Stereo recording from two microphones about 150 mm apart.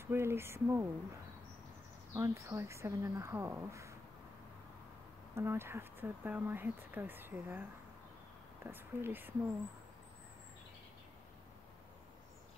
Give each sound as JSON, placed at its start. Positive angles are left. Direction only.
{"t": 0.0, "sound": "speech", "side_deg": -15}
{"t": 2.1, "sound": "a woman's voice", "side_deg": -20}
{"t": 5.3, "sound": "speech", "side_deg": -15}
{"t": 8.6, "sound": "speech", "side_deg": -15}